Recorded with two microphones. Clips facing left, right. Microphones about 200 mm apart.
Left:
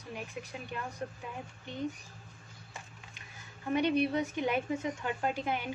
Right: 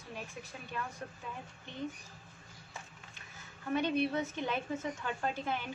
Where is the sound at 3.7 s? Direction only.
15° left (ahead or behind).